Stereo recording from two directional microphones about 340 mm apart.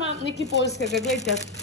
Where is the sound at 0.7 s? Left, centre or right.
Left.